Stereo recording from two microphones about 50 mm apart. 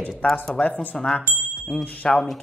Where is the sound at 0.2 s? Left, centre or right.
Left.